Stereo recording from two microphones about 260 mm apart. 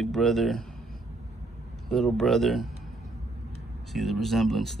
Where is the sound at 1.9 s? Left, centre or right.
Centre.